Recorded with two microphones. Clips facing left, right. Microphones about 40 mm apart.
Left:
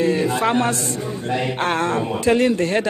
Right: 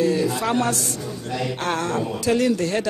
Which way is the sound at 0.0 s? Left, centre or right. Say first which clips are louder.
Left 2 dB; left.